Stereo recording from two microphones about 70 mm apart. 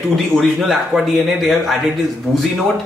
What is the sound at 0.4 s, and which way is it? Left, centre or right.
A man's voice, centre.